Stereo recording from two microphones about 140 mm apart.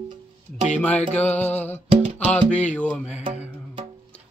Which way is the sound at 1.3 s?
10° left (ahead or behind).